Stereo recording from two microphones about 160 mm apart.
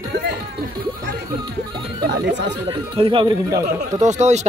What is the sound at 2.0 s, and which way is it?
Speech, 90° right.